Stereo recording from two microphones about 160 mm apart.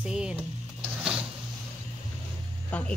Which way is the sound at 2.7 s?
10° left (ahead or behind).